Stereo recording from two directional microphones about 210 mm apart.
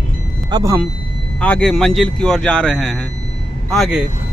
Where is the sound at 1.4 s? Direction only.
5° left (ahead or behind).